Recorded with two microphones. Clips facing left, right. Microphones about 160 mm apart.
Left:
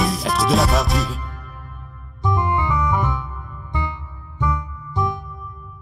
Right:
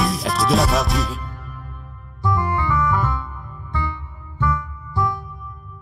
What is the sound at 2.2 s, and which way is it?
Music, 20° left (ahead or behind).